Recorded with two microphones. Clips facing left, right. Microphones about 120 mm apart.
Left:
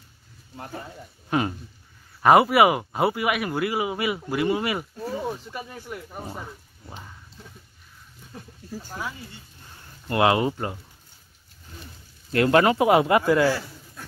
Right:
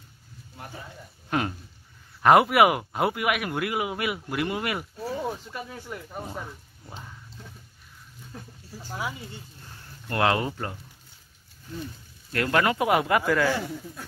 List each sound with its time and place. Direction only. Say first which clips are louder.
2.2 s speech: left 1 dB; centre (ahead or behind)
8.3 s speech: left 1 dB; 5° left (ahead or behind)
10.0 s speech: left 4 dB; 10° left (ahead or behind)
12.3 s speech: left 5 dB; 25° left (ahead or behind)